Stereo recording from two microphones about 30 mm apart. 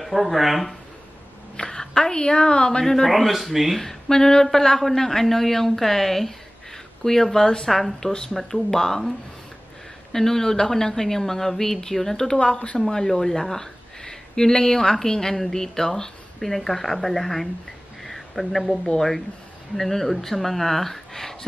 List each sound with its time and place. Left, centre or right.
0.0 s speech: centre
1.6 s a woman's voice: left
2.8 s a woman's voice: centre
3.1 s speech: centre
3.7 s a woman's voice: centre
10.1 s a woman's voice: centre
12.2 s a woman's voice: left
16.3 s a woman's voice: centre
18.0 s a sound: centre
18.9 s a woman's voice: centre